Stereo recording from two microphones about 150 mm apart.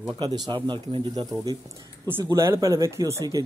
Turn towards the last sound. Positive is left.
turn(degrees=-20)  # may be behind; listen again after turning